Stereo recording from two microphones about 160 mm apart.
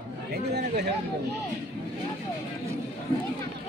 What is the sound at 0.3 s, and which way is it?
Speech, 90° right.